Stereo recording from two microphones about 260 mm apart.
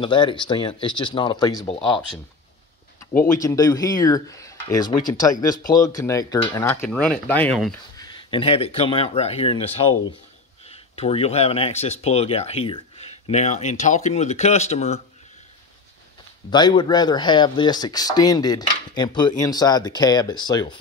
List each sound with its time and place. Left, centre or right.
0.0 s speech: centre
3.4 s speech: centre
8.0 s speech: centre
16.4 s speech: centre